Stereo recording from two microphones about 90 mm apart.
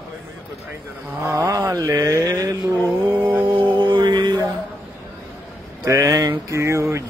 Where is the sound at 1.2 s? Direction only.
30° right (ahead or behind).